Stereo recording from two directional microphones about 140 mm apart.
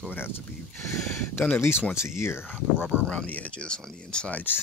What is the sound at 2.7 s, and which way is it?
Speech, 10° right (ahead or behind).